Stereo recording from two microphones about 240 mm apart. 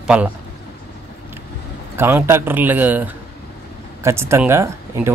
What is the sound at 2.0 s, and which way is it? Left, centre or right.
Speech, centre.